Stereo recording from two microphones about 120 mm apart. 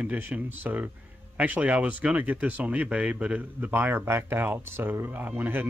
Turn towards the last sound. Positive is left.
turn(degrees=-15)  # may be behind; listen again after turning